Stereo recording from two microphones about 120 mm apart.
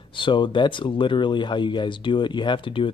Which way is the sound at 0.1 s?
40° left (ahead or behind).